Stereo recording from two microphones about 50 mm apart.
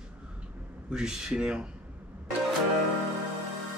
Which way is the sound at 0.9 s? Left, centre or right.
Centre.